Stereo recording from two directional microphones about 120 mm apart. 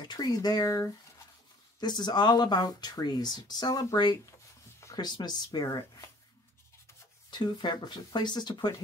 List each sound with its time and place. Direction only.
0.0 s speech: 35° left (ahead or behind)
7.2 s speech: 40° left (ahead or behind)